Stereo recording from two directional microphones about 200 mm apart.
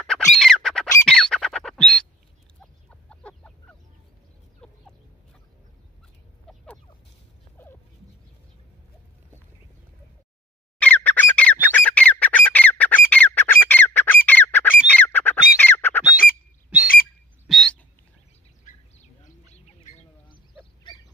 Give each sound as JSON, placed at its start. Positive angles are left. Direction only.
{"t": 0.3, "sound": "squawk", "side_deg": 0}
{"t": 2.6, "sound": "a sound", "side_deg": 5}
{"t": 4.6, "sound": "chicken", "side_deg": 5}
{"t": 6.4, "sound": "a sound", "side_deg": 5}
{"t": 10.8, "sound": "squawk", "side_deg": 10}
{"t": 16.7, "sound": "bird", "side_deg": -5}
{"t": 18.9, "sound": "bird", "side_deg": 35}